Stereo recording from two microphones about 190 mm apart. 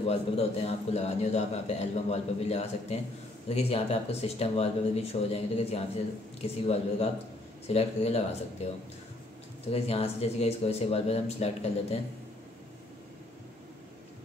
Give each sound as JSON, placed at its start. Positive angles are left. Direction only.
{"t": 0.0, "sound": "a man's voice", "side_deg": 30}